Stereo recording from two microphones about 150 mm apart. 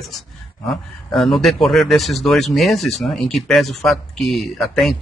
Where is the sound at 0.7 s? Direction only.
Centre (ahead or behind).